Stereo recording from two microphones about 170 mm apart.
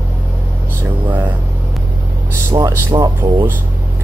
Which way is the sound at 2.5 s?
25° right (ahead or behind).